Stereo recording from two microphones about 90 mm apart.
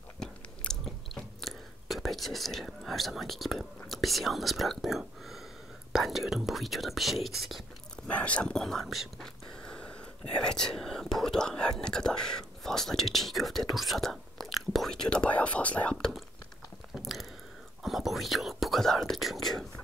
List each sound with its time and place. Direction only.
0.2 s chewing: 5° left (ahead or behind)
5.9 s speech: centre (ahead or behind)
7.9 s speech: 15° left (ahead or behind)
9.6 s speech: 10° left (ahead or behind)
16.9 s biting: centre (ahead or behind)
17.8 s speech: centre (ahead or behind)